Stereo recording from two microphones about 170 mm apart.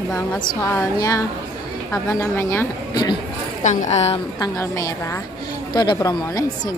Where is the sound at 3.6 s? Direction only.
40° left (ahead or behind).